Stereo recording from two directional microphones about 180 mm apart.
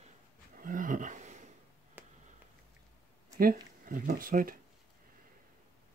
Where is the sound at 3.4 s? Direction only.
50° right (ahead or behind).